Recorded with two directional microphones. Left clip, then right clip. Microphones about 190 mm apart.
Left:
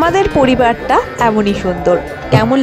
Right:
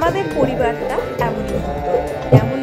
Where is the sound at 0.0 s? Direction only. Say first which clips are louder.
Left 6 dB; 55° left (ahead or behind).